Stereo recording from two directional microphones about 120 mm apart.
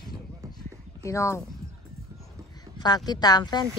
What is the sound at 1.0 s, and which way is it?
Speech, 25° left (ahead or behind).